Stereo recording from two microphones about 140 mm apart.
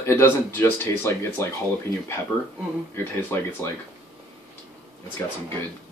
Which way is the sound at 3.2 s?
15° left (ahead or behind).